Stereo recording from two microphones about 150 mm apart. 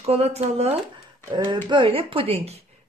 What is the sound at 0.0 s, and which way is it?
Speech, 45° right (ahead or behind).